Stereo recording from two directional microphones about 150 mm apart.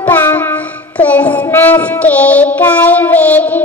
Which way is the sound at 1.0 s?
10° left (ahead or behind).